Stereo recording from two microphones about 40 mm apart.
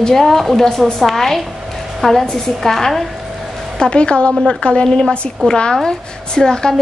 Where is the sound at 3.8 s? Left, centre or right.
Left.